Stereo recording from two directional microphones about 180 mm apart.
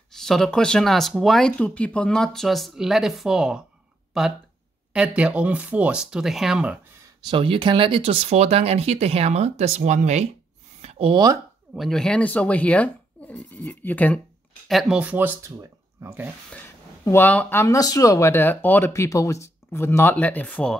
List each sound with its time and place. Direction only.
0.1 s speech: centre (ahead or behind)
7.2 s speech: 25° right (ahead or behind)
10.8 s a sound: 35° right (ahead or behind)
11.7 s speech: centre (ahead or behind)
14.7 s speech: centre (ahead or behind)
16.5 s speech: 15° left (ahead or behind)